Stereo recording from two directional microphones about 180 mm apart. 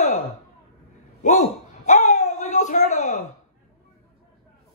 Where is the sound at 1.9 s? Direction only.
40° left (ahead or behind).